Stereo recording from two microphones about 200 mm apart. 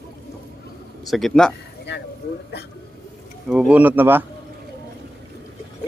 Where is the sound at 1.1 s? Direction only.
Centre (ahead or behind).